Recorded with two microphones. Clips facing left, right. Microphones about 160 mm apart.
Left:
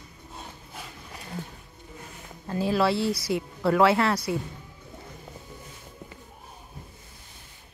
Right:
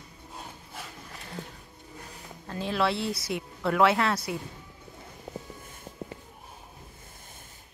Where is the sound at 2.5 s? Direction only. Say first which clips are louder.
Left 4 dB; 5° left (ahead or behind).